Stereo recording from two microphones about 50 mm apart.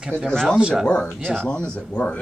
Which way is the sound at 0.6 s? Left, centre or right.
Centre.